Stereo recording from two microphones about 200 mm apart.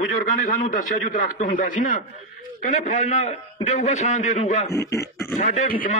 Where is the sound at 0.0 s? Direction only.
40° left (ahead or behind).